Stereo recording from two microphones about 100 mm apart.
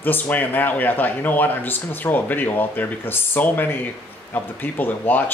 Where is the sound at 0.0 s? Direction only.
20° left (ahead or behind).